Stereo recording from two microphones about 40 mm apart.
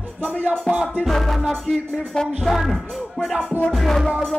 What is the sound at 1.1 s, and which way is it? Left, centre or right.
Music, centre.